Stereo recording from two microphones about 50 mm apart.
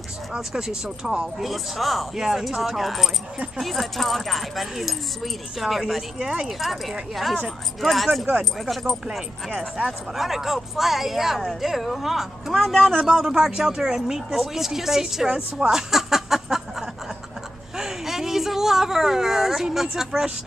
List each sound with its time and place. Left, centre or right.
0.3 s speech: centre
6.1 s speech: centre
6.4 s speech: centre
13.0 s speech: centre
17.7 s speech: centre